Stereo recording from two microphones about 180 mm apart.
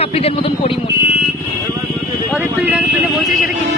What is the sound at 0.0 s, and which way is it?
Speech, 35° left (ahead or behind).